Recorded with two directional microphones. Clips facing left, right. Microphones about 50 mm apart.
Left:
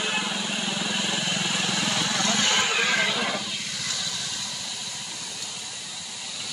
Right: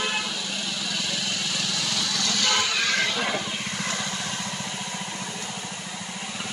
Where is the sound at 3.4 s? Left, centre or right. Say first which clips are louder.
Right 3 dB; right.